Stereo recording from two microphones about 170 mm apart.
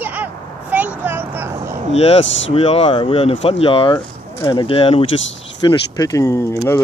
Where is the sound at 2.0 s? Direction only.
35° left (ahead or behind).